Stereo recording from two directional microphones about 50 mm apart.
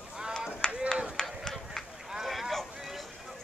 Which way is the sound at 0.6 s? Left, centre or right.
Centre.